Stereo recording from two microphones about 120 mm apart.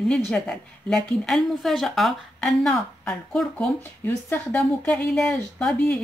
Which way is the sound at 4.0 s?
20° left (ahead or behind).